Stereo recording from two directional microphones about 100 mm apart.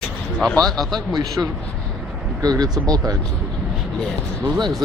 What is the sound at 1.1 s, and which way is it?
Speech, 40° right (ahead or behind).